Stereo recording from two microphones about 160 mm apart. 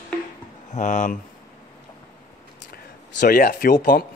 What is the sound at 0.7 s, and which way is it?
Speech, 50° left (ahead or behind).